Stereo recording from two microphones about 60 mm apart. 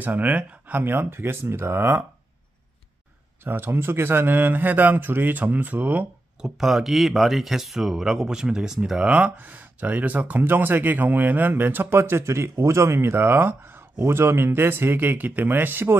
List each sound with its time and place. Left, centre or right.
0.0 s speech: right
0.9 s speech: right
3.4 s speech: right
6.4 s speech: centre; by 16.0 s right